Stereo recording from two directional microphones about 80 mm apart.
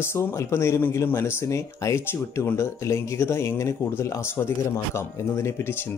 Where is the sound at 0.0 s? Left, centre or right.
Left.